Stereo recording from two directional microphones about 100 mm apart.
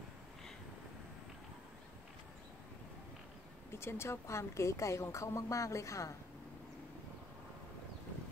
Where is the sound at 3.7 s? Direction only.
25° left (ahead or behind).